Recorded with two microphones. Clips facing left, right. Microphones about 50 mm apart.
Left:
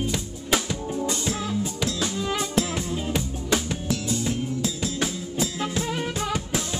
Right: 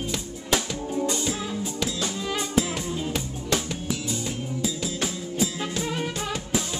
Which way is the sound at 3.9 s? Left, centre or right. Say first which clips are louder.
Left 6 dB; centre.